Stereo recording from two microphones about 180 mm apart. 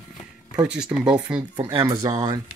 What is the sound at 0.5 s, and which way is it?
Speech, 5° right (ahead or behind).